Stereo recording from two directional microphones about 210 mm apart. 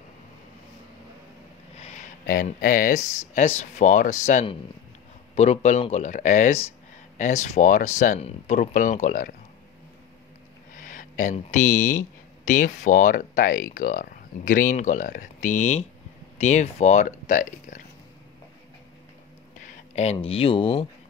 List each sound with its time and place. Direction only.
1.8 s speech: 35° left (ahead or behind)
10.8 s speech: 40° left (ahead or behind)
19.6 s speech: 35° left (ahead or behind)